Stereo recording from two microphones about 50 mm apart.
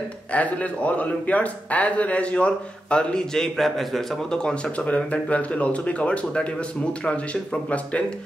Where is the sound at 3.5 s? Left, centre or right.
Centre; by 8.1 s left.